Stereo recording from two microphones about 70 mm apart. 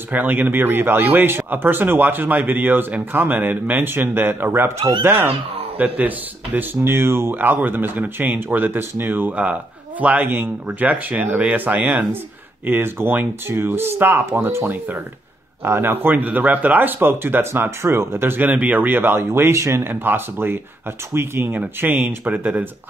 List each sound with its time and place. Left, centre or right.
0.1 s speech: right
18.5 s speech: right